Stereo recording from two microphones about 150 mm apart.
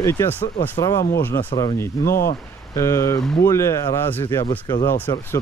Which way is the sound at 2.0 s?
80° left.